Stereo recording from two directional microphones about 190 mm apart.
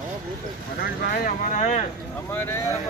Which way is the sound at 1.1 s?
45° left (ahead or behind).